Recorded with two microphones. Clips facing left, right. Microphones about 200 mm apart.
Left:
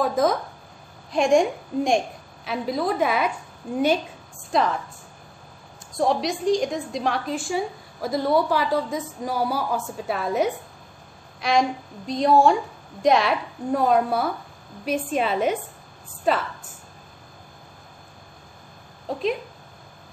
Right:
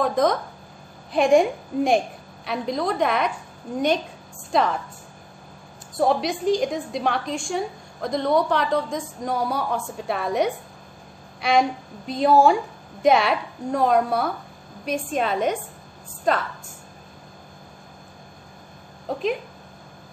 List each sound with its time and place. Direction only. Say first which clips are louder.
0.0 s a woman's voice: right 1 dB; 5° left (ahead or behind)
4.5 s a woman's voice: right 1 dB; centre (ahead or behind)
5.9 s a woman's voice: right 1 dB; centre (ahead or behind)